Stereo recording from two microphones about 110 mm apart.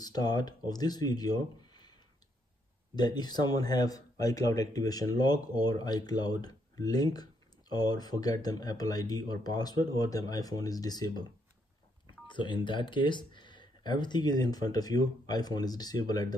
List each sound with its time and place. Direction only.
0.0 s speech: 35° left (ahead or behind)
3.0 s speech: 40° left (ahead or behind)
12.3 s speech: 45° left (ahead or behind)